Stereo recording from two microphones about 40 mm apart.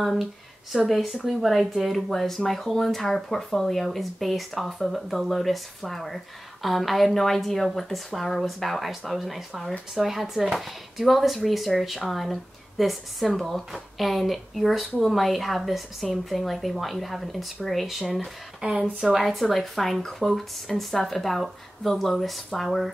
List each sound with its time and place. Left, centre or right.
0.8 s speech: centre
9.9 s speech: centre
18.6 s speech: centre
19.1 s speech: centre